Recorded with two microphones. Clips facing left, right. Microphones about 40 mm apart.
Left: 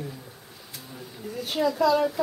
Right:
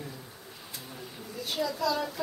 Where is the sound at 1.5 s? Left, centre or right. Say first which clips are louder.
Left 8 dB; left.